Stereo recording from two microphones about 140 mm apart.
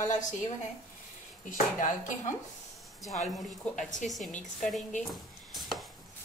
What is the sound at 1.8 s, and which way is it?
Speech, 65° left (ahead or behind).